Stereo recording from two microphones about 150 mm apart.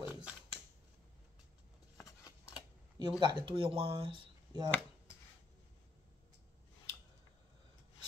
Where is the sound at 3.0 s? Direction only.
30° right (ahead or behind).